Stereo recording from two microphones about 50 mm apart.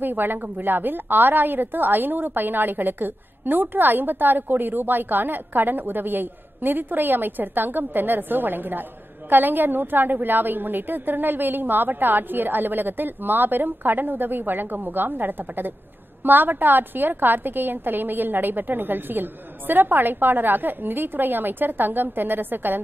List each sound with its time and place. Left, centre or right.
0.0 s a woman's voice: right